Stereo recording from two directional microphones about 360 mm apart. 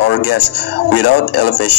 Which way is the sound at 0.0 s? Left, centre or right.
Left.